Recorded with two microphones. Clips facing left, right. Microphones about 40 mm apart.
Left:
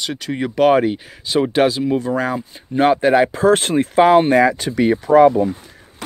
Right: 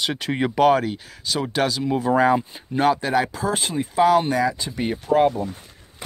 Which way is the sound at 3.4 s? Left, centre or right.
Left.